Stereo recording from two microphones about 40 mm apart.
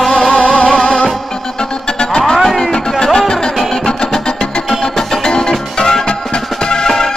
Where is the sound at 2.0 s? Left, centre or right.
Centre.